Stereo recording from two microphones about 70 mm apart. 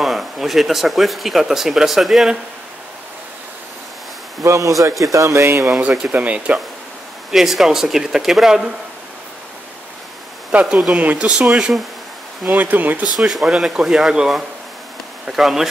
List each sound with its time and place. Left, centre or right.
0.0 s speech: centre
4.4 s speech: right
6.1 s speech: centre
7.2 s speech: centre
10.5 s speech: centre
12.4 s speech: right
13.2 s speech: centre